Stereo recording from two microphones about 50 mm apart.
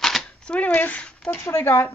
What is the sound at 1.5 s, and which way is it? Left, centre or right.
Speech, left.